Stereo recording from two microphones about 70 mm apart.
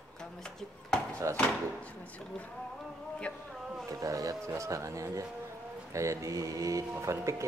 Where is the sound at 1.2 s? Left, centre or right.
Right.